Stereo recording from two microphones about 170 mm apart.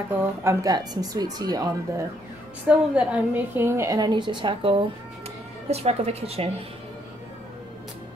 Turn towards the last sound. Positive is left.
turn(degrees=-35)  # may be behind; listen again after turning